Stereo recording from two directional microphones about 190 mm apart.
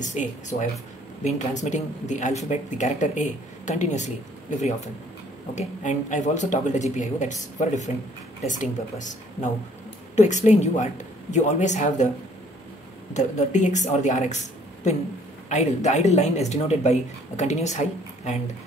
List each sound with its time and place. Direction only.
0.0 s speech: 40° left (ahead or behind)
13.1 s speech: 40° left (ahead or behind)
15.4 s speech: 35° left (ahead or behind)